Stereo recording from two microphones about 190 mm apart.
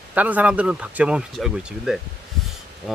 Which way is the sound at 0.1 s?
10° right (ahead or behind).